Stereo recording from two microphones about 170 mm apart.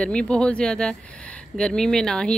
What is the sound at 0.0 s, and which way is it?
Speech, 5° left (ahead or behind).